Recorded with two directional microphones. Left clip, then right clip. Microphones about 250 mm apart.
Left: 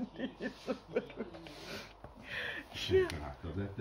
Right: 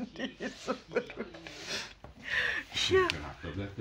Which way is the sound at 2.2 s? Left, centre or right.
Centre.